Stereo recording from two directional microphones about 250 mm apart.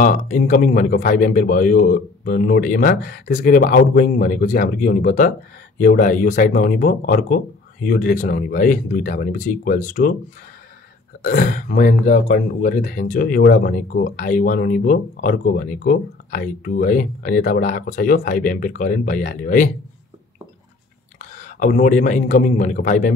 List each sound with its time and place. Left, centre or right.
0.0 s speech: left
11.2 s speech: left
21.2 s a man's voice: left